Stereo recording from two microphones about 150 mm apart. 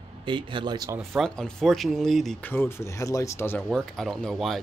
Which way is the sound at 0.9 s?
Centre (ahead or behind).